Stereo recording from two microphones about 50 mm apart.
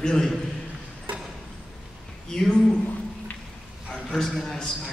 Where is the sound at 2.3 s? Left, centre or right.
Centre.